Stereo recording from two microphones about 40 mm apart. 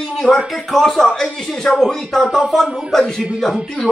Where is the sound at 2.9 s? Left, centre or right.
Centre.